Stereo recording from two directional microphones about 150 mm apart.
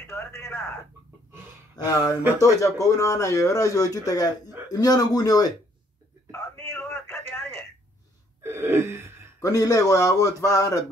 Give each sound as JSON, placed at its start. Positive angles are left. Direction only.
{"t": 0.0, "sound": "speech", "side_deg": 15}
{"t": 1.8, "sound": "speech", "side_deg": 25}
{"t": 6.3, "sound": "a sound", "side_deg": 15}
{"t": 8.4, "sound": "gasp", "side_deg": -15}
{"t": 9.4, "sound": "speech", "side_deg": 25}